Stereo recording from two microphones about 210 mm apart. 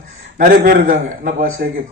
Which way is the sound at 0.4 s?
45° right (ahead or behind).